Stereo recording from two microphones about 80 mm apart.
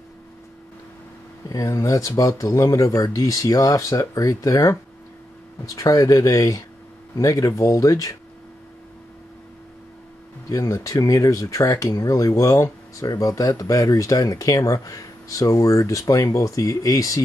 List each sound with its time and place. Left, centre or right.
1.5 s speech: left
10.5 s speech: left